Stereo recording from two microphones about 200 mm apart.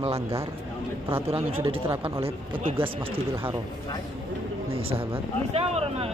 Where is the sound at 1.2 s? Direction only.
30° right (ahead or behind).